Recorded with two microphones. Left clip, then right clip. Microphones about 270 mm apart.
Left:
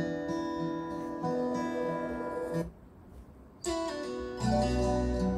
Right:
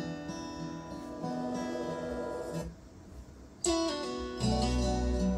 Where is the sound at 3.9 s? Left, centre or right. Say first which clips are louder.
Right 1 dB; right.